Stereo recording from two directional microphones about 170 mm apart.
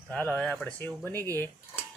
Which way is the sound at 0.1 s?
5° left (ahead or behind).